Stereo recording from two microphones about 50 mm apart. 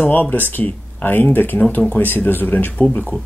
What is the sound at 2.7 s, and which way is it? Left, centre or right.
Speech, left.